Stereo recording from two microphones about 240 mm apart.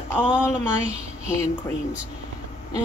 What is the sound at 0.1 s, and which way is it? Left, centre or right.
Speech, centre.